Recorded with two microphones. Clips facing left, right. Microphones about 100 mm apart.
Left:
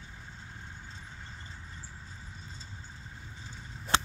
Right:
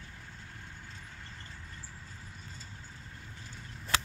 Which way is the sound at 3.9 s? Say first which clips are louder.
Left 4 dB; 25° left (ahead or behind).